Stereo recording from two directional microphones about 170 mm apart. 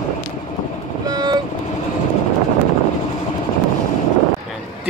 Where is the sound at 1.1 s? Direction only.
25° right (ahead or behind).